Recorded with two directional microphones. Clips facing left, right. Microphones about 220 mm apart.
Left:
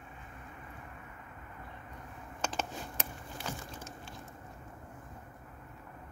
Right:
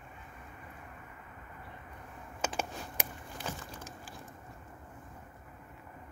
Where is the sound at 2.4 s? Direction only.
10° right (ahead or behind).